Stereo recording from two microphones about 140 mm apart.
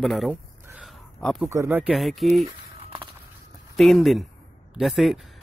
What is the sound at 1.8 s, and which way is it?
Speech, centre (ahead or behind).